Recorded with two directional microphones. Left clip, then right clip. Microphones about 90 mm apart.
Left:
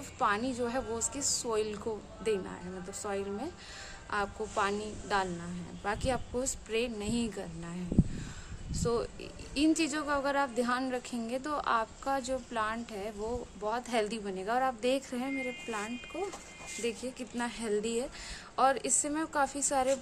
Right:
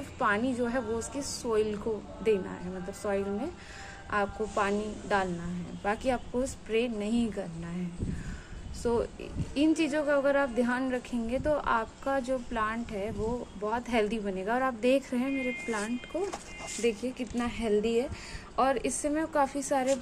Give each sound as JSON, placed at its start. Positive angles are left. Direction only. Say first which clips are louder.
{"t": 0.2, "sound": "a woman's voice", "louder": "right 2 dB", "side_deg": 15}
{"t": 8.7, "sound": "a woman's voice", "louder": "right 3 dB", "side_deg": 5}
{"t": 9.6, "sound": "a woman's voice", "louder": "right 3 dB", "side_deg": 15}
{"t": 14.7, "sound": "a woman's voice", "louder": "right 4 dB", "side_deg": 0}
{"t": 16.8, "sound": "a woman's voice", "louder": "right 6 dB", "side_deg": 15}